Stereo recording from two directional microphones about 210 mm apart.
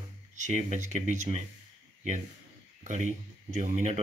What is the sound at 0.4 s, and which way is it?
Speech, 35° right (ahead or behind).